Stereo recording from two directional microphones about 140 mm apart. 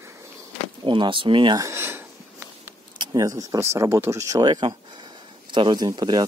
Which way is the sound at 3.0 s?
25° right (ahead or behind).